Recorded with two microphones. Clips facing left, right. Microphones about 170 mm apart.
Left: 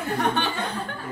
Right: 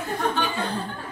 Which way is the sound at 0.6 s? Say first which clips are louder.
Right 1 dB; 30° right (ahead or behind).